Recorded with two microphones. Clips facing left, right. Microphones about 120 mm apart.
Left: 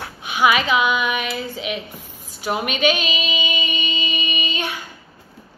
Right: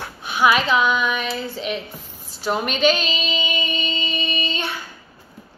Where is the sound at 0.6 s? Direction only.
10° left (ahead or behind).